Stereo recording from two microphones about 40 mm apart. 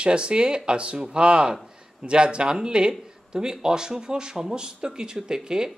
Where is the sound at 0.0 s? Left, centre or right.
Right.